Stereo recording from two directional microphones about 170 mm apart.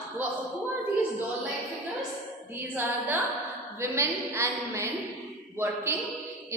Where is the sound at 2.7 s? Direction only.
10° right (ahead or behind).